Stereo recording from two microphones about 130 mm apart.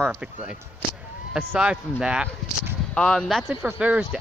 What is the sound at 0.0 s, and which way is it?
Speech, 10° right (ahead or behind).